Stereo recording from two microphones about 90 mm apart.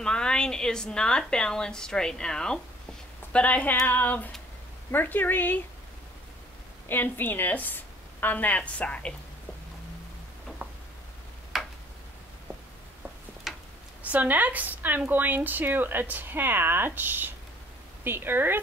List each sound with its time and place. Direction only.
0.0 s a woman's voice: 10° left (ahead or behind)
6.9 s a woman's voice: 20° left (ahead or behind)
10.6 s a sound: 20° right (ahead or behind)
11.5 s tick-tock: centre (ahead or behind)
13.5 s tick-tock: 5° right (ahead or behind)
14.0 s speech: 20° right (ahead or behind)